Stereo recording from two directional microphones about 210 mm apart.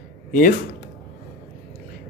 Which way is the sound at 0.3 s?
40° left (ahead or behind).